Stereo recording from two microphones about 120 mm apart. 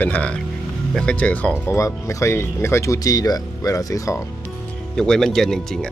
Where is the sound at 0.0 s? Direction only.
10° left (ahead or behind).